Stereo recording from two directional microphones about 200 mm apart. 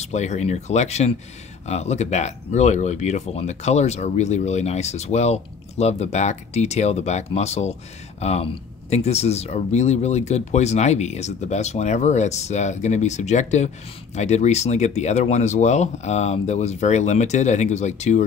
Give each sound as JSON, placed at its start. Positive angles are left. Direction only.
{"t": 0.0, "sound": "speech", "side_deg": 35}